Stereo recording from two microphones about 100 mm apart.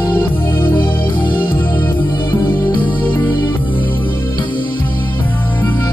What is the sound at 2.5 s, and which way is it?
Music, 20° left (ahead or behind).